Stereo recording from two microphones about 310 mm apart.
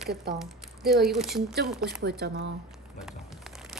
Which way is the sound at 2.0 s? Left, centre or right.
Right.